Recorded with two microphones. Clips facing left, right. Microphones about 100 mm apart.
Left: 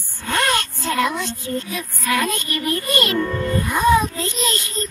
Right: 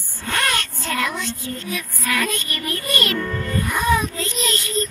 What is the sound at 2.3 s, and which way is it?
Music, 50° right (ahead or behind).